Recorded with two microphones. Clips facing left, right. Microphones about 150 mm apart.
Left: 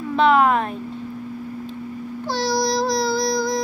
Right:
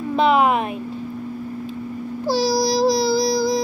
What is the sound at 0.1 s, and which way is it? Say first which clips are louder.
Speech: even; 15° right (ahead or behind).